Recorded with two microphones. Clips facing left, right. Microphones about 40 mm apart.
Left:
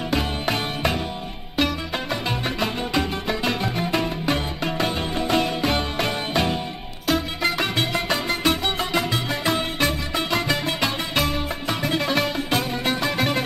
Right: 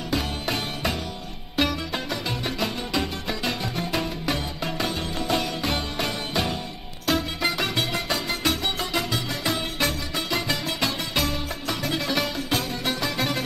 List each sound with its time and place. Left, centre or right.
0.1 s music: left
1.6 s music: centre
2.6 s music: centre
7.1 s music: centre
8.1 s music: left